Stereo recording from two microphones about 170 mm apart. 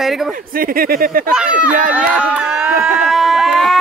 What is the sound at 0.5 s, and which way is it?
Speech, 60° right (ahead or behind).